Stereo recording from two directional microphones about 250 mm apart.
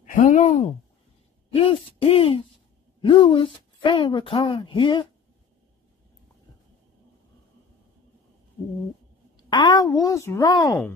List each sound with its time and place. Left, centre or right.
0.0 s speech: left
9.4 s speech: centre